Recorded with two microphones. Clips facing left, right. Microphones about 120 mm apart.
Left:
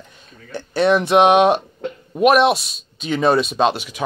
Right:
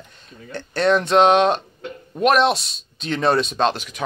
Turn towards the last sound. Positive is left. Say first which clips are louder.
# left 2 dB
turn(degrees=5)  # may be behind; listen again after turning